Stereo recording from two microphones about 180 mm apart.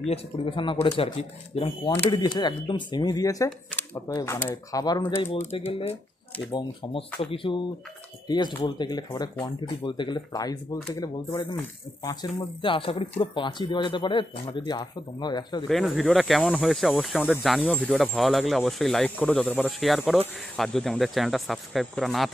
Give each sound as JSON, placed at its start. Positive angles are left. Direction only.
{"t": 0.0, "sound": "speech", "side_deg": 30}
{"t": 5.7, "sound": "speech", "side_deg": 30}
{"t": 15.7, "sound": "speech", "side_deg": 0}